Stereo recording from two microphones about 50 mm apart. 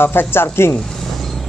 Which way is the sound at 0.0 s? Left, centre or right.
Left.